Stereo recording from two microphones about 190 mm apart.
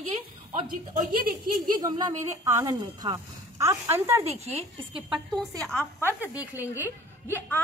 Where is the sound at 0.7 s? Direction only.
50° right (ahead or behind).